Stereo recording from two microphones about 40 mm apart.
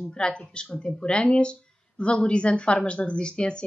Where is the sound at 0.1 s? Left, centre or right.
Left.